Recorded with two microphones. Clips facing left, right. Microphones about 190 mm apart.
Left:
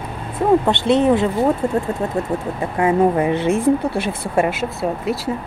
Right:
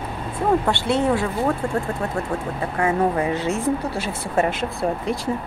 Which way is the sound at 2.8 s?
20° left (ahead or behind).